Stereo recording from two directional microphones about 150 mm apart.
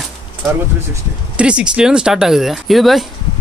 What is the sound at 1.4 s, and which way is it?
Speech, 5° right (ahead or behind).